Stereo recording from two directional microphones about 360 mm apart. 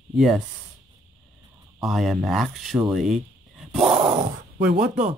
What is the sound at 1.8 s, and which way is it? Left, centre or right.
Speech, centre.